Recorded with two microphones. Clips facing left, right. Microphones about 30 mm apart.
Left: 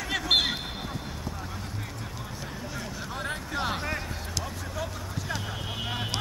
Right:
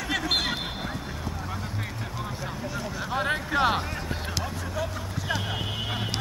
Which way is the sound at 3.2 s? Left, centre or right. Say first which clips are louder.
Right 8 dB; right.